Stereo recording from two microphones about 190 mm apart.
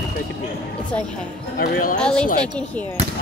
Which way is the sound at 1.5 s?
50° left (ahead or behind).